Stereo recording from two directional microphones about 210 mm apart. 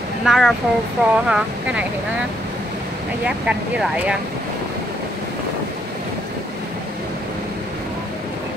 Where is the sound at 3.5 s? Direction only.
5° right (ahead or behind).